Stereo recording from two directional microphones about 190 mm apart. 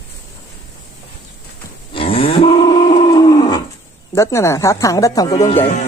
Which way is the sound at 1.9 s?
30° left (ahead or behind).